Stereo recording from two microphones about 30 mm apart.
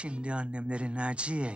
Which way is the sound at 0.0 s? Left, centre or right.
Right.